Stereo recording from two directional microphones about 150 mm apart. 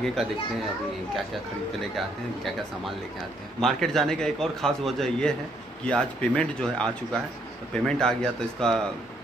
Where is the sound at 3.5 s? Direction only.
5° left (ahead or behind).